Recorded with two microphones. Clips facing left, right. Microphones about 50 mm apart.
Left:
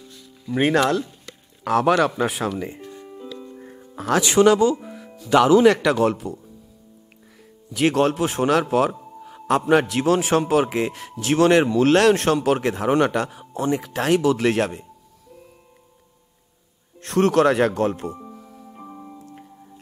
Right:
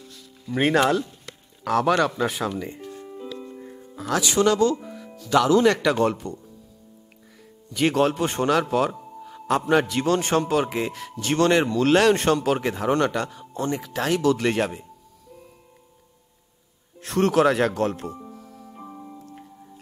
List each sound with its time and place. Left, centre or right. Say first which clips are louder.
0.5 s speech: left 1 dB; centre
1.6 s speech: left 2 dB; centre
2.6 s music: left 2 dB; centre
3.6 s music: right 1 dB; centre
3.9 s speech: left 4 dB; left
4.5 s speech: left 4 dB; centre
7.7 s speech: left 2 dB; centre
12.9 s speech: left 3 dB; centre
14.6 s speech: left 2 dB; centre
17.0 s music: left 2 dB; centre